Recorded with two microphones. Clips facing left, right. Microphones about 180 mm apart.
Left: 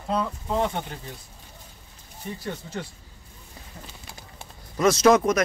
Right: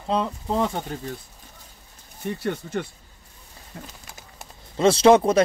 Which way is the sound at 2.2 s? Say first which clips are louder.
Right 6 dB; 65° right (ahead or behind).